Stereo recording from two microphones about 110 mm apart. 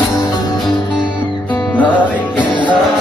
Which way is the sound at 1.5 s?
15° left (ahead or behind).